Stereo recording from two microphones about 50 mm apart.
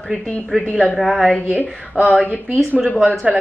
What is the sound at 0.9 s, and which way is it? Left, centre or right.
Speech, centre.